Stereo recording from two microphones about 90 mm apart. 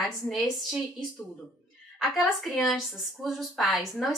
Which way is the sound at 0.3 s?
Centre (ahead or behind).